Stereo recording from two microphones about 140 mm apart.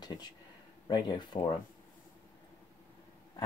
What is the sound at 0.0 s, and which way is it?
Speech, 30° left (ahead or behind).